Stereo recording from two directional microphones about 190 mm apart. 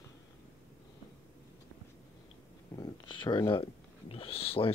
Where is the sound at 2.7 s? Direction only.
20° left (ahead or behind).